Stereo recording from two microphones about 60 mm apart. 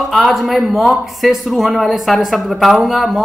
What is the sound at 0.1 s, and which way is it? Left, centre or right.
Speech, centre.